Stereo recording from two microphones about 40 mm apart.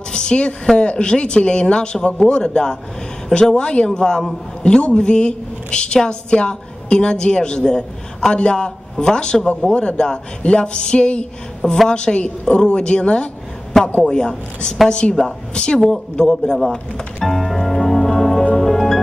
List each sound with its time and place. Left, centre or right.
0.1 s a woman's voice: left
16.7 s music: centre